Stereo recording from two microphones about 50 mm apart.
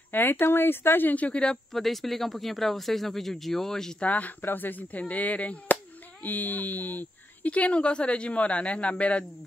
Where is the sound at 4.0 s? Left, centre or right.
Left.